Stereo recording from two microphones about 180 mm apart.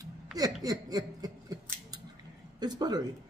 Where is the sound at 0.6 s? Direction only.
20° right (ahead or behind).